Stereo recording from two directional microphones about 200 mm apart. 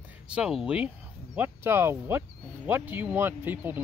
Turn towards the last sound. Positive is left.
turn(degrees=-10)  # may be behind; listen again after turning